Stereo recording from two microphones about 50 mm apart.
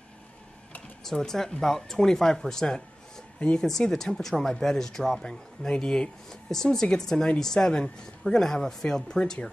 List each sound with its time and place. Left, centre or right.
1.0 s speech: centre
3.3 s speech: left
3.6 s speech: centre